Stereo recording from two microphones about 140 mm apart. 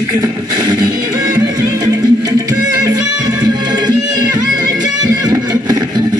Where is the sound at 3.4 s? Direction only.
30° right (ahead or behind).